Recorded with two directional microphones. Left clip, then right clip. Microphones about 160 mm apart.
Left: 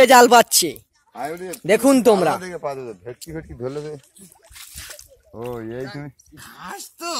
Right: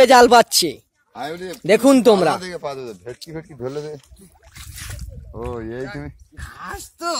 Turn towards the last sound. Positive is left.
turn(degrees=-10)  # may be behind; listen again after turning